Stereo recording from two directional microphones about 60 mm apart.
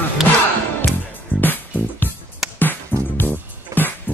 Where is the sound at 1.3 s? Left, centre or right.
Left.